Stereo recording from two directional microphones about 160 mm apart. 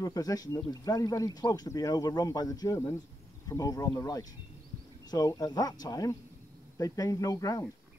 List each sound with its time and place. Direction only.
0.0 s speech: 20° left (ahead or behind)